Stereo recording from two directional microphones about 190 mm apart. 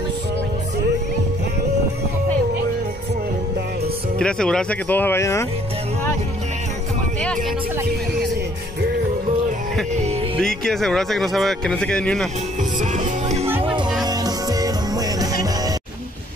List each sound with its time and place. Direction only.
4.2 s speech: 5° left (ahead or behind)
10.4 s speech: centre (ahead or behind)
12.9 s music: 40° right (ahead or behind)
14.0 s music: 20° right (ahead or behind)